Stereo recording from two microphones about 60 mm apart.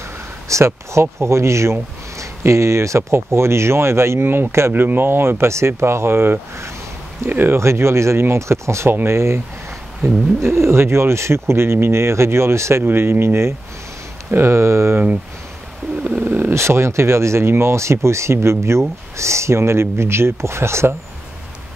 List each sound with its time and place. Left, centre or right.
0.5 s speech: right
7.5 s speech: right
10.5 s speech: right
12.8 s speech: right
16.0 s a sound: right
16.5 s speech: right